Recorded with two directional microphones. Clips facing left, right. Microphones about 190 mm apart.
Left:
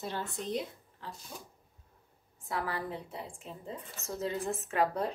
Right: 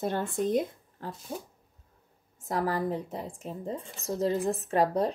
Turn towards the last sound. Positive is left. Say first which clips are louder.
# right 5 dB
turn(degrees=-35)  # may be behind; listen again after turning